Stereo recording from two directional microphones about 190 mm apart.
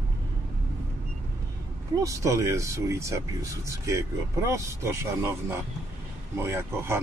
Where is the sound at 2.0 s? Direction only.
15° right (ahead or behind).